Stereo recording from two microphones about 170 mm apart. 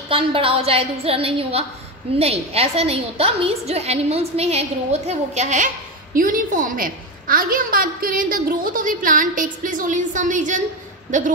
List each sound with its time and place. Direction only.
0.1 s a woman's voice: 30° right (ahead or behind); by 11.3 s 45° right (ahead or behind)